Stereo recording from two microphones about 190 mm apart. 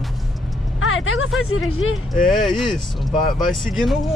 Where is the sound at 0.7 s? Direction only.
90° left.